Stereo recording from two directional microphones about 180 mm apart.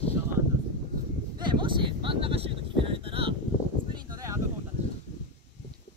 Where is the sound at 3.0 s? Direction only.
30° right (ahead or behind).